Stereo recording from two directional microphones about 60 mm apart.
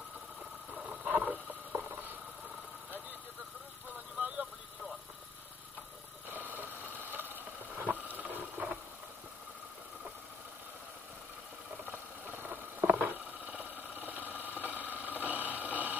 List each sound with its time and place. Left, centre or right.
0.8 s boat: right
6.3 s a sound: right
11.8 s vehicle: right